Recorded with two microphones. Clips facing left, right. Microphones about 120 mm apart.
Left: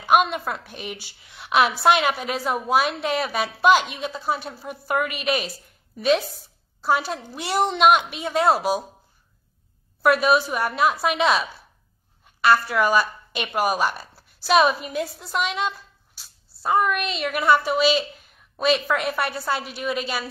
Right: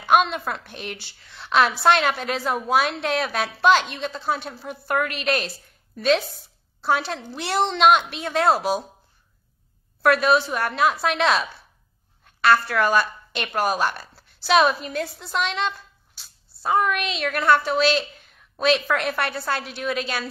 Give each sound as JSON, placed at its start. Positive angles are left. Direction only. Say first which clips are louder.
{"t": 0.0, "sound": "a woman's voice", "louder": "even", "side_deg": 5}
{"t": 10.0, "sound": "a woman's voice", "louder": "even", "side_deg": 5}